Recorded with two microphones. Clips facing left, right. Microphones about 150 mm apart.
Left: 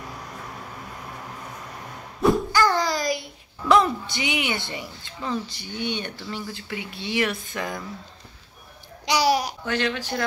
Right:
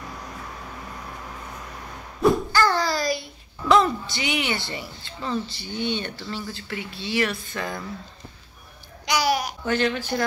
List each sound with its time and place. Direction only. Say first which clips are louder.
2.5 s a child's voice: even; 15° left (ahead or behind)
9.0 s babbling: left 2 dB; 30° left (ahead or behind)
9.7 s speech: right 4 dB; centre (ahead or behind)